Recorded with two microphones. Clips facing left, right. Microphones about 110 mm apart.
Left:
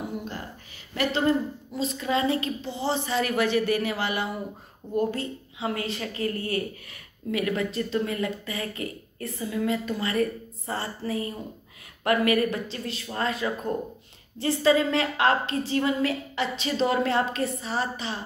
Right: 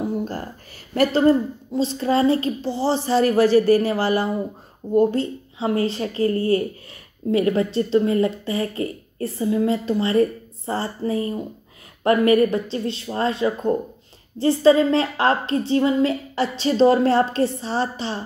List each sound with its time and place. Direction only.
0.9 s a woman's voice: 40° right (ahead or behind)
1.7 s a woman's voice: 30° right (ahead or behind)